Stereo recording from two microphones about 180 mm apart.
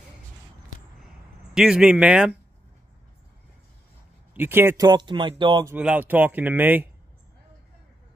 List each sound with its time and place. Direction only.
1.5 s speech: 5° right (ahead or behind)
4.3 s speech: 10° right (ahead or behind)
4.8 s speech: 25° right (ahead or behind)
5.7 s speech: 10° right (ahead or behind)